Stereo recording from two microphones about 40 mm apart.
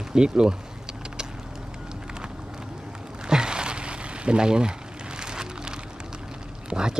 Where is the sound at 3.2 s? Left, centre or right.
Centre.